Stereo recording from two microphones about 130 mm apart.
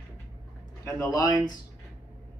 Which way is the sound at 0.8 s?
25° left (ahead or behind).